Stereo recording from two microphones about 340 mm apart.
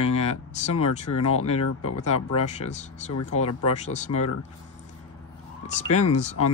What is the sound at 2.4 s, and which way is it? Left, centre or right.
Speech, centre.